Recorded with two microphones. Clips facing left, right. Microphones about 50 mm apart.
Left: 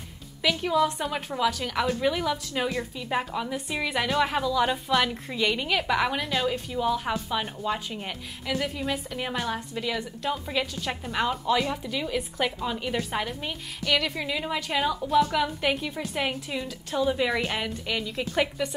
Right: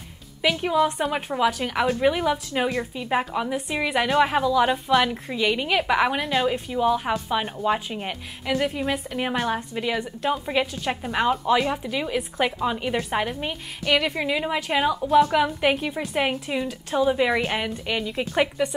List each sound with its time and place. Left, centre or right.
0.4 s a woman's voice: right
5.7 s a woman's voice: centre